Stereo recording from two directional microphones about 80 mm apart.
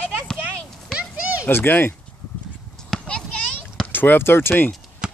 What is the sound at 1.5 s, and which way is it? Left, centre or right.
Speech, left.